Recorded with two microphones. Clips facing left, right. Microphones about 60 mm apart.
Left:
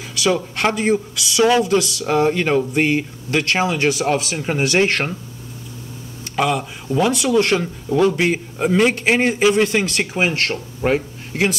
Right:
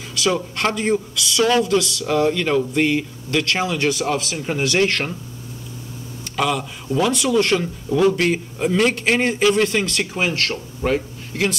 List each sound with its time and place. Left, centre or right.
0.0 s speech: centre
2.0 s speech: left
3.8 s speech: left
6.3 s speech: centre
10.1 s speech: left